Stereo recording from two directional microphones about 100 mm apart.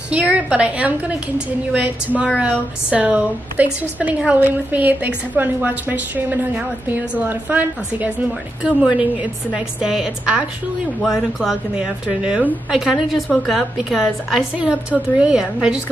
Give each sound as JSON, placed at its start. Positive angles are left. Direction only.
{"t": 0.1, "sound": "a woman's voice", "side_deg": -15}